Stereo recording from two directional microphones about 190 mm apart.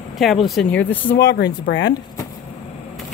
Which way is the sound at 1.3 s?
65° left (ahead or behind).